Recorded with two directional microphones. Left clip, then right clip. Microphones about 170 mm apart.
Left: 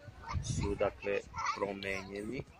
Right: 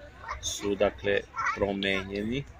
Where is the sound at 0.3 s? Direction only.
55° left (ahead or behind).